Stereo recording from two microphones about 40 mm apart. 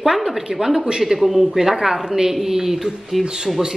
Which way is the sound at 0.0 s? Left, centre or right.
Centre.